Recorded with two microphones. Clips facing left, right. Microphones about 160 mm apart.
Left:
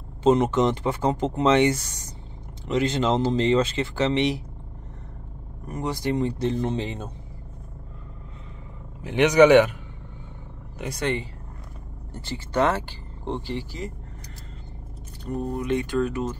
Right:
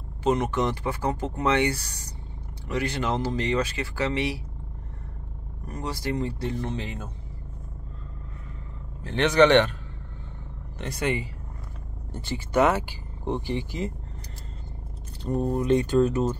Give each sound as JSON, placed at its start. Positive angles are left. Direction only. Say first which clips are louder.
{"t": 0.2, "sound": "speech", "louder": "left 5 dB", "side_deg": 25}
{"t": 5.7, "sound": "speech", "louder": "left 4 dB", "side_deg": 20}
{"t": 9.0, "sound": "a man's voice", "louder": "left 3 dB", "side_deg": 15}
{"t": 11.0, "sound": "speech", "louder": "even", "side_deg": -10}
{"t": 15.2, "sound": "speech", "louder": "right 3 dB", "side_deg": -35}